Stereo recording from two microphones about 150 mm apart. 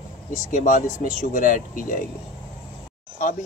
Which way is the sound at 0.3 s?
55° left (ahead or behind).